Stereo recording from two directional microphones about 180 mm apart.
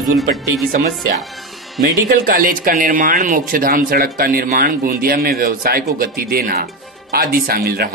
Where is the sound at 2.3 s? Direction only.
50° right (ahead or behind).